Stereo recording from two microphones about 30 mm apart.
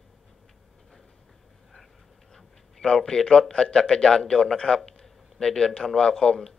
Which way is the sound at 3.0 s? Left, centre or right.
Centre.